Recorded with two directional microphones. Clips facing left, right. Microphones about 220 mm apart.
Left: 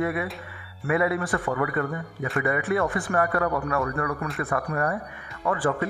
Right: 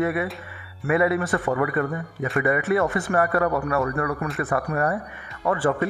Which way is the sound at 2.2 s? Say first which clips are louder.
Right 3 dB; centre (ahead or behind).